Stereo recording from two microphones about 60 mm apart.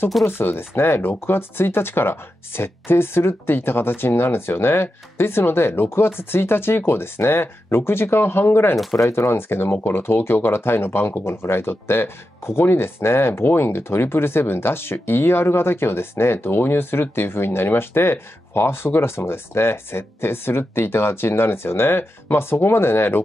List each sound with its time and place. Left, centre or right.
0.2 s speech: left
8.9 s speech: left